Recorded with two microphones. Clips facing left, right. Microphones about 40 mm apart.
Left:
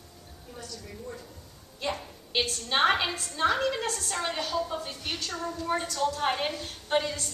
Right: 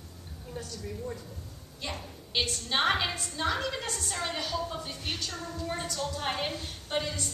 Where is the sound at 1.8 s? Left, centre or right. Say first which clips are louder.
Left 5 dB; centre.